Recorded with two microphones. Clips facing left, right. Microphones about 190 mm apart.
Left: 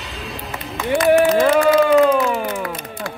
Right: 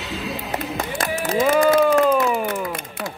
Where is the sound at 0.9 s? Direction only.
70° left (ahead or behind).